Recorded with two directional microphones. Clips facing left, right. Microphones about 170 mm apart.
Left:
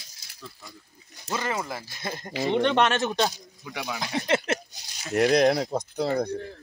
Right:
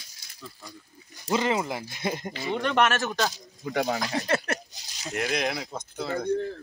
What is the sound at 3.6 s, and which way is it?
Speech, 50° right (ahead or behind).